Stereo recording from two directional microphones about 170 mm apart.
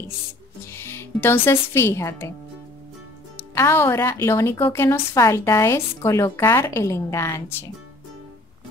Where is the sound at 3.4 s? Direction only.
15° left (ahead or behind).